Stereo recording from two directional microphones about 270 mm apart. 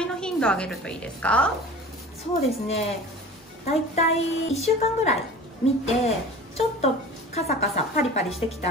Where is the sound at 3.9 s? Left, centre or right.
Left.